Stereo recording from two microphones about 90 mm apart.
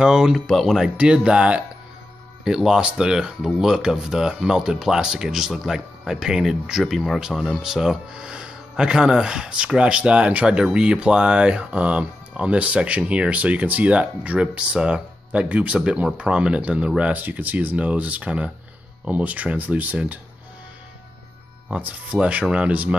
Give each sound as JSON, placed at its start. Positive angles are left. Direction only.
{"t": 0.0, "sound": "speech", "side_deg": -5}
{"t": 21.6, "sound": "speech", "side_deg": -15}